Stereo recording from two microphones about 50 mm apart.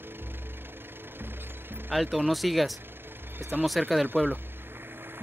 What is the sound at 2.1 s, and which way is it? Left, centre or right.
Speech, centre.